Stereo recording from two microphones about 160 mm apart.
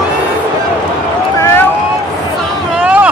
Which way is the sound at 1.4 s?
15° left (ahead or behind).